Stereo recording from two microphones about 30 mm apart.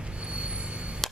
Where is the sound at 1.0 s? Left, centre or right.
Centre.